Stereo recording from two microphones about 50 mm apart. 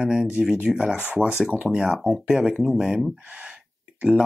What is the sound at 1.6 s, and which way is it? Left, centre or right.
Speech, centre.